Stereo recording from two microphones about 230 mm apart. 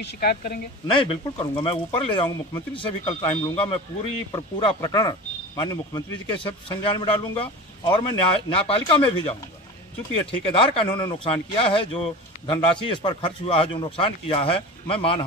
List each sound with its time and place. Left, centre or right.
0.0 s a woman's voice: left
0.9 s a man's voice: left
10.5 s a man's voice: left